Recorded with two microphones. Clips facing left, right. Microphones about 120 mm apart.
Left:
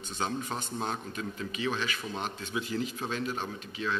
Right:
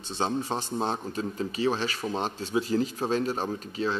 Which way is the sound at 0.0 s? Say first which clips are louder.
Right 5 dB; 30° right (ahead or behind).